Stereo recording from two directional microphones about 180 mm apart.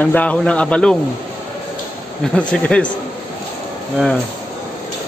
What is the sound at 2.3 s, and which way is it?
Speech, 5° left (ahead or behind).